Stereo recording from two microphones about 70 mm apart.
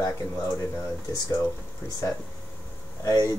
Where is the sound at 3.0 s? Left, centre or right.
Left.